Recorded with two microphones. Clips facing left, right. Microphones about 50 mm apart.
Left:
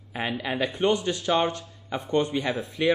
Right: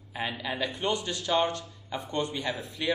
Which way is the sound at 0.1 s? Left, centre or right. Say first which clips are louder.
Left 4 dB; left.